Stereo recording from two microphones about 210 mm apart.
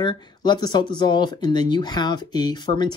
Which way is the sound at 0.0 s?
20° left (ahead or behind).